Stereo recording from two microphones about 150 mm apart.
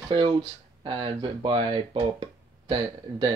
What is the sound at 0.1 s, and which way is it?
Speech, 35° right (ahead or behind).